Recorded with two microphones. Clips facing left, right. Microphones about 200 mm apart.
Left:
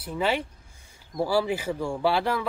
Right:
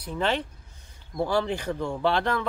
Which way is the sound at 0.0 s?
5° left (ahead or behind).